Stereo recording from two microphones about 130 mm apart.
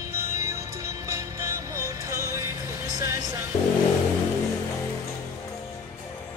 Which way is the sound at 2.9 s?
20° right (ahead or behind).